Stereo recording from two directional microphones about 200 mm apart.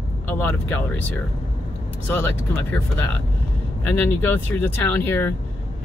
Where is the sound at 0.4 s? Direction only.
10° left (ahead or behind).